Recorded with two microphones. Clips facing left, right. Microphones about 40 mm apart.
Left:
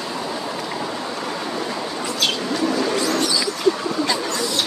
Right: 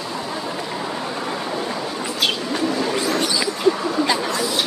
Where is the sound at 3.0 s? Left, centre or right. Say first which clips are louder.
Even; centre.